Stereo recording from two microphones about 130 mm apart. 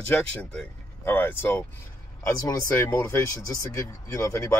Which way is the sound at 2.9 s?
20° left (ahead or behind).